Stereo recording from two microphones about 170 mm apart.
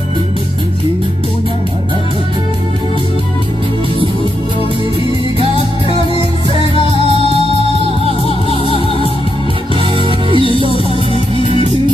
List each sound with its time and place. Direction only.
8.6 s music: 35° left (ahead or behind)
9.8 s music: 30° right (ahead or behind)